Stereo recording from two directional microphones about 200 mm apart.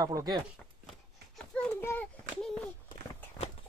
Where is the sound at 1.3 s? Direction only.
5° left (ahead or behind).